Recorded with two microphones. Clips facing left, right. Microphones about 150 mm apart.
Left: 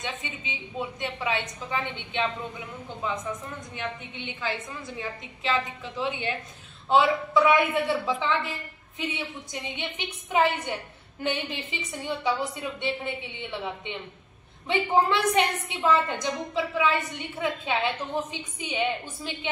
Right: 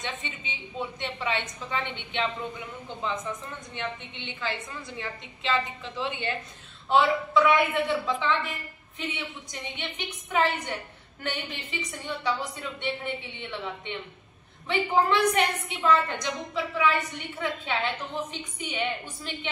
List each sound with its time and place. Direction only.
0.0 s a woman's voice: 10° left (ahead or behind)
9.8 s a woman's voice: 15° left (ahead or behind)